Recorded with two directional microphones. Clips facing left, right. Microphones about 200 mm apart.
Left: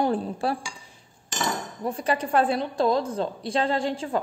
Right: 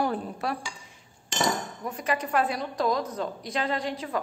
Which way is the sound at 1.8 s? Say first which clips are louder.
Left 6 dB; 30° left (ahead or behind).